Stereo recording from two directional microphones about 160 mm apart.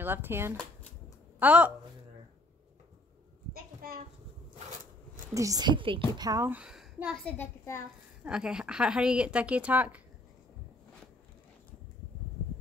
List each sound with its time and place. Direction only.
0.0 s speech: 15° right (ahead or behind)
3.8 s a child's voice: 70° right (ahead or behind)
5.3 s speech: 20° right (ahead or behind)
6.6 s a sound: 5° right (ahead or behind)
7.2 s a child's voice: 15° left (ahead or behind)
8.2 s speech: 5° right (ahead or behind)